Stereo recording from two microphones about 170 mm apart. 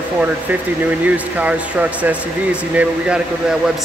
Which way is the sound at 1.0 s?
10° right (ahead or behind).